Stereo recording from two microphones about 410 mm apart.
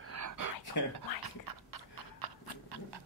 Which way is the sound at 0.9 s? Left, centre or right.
Right.